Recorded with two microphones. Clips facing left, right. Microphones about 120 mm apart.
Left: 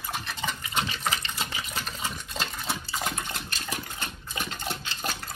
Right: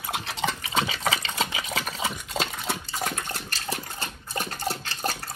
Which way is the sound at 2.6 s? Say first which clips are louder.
Right 1 dB; 60° right (ahead or behind).